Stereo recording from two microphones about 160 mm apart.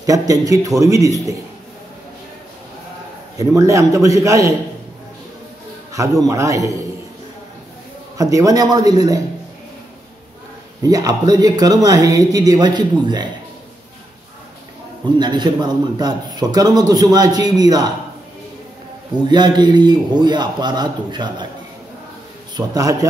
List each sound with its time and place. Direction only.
0.0 s a man's voice: 20° right (ahead or behind)
3.3 s a man's voice: 20° right (ahead or behind)
5.9 s a man's voice: 20° right (ahead or behind)
8.2 s a man's voice: 20° right (ahead or behind)
10.8 s a man's voice: 25° right (ahead or behind)
15.1 s a man's voice: 25° right (ahead or behind)
19.2 s a man's voice: 25° right (ahead or behind)
22.6 s a man's voice: 20° right (ahead or behind)